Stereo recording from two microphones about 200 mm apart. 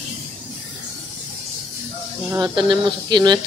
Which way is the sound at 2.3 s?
20° right (ahead or behind).